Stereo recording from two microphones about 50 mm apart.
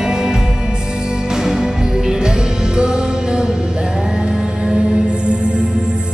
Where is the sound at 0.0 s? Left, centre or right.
Centre.